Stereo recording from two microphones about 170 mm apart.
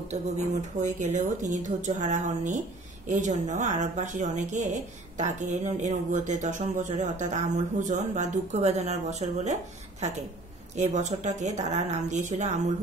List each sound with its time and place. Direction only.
0.1 s speech: 45° right (ahead or behind)